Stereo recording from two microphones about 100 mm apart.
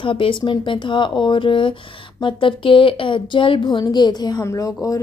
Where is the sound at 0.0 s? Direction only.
55° left (ahead or behind).